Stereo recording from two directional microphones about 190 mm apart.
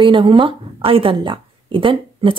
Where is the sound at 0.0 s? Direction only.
25° right (ahead or behind).